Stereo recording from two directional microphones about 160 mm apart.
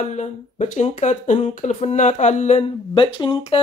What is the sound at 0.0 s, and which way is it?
Speech, 45° left (ahead or behind).